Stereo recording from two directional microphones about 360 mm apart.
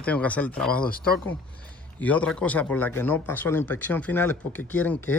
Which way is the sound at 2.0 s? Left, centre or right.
Centre.